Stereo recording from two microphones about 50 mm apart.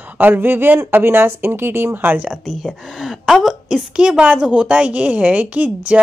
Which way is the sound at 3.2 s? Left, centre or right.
Centre.